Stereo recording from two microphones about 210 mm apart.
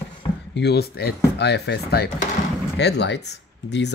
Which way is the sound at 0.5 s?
50° left (ahead or behind).